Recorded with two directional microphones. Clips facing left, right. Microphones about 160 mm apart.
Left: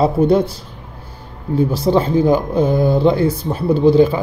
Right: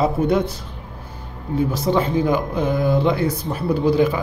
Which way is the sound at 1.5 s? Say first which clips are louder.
Left 4 dB; 30° left (ahead or behind).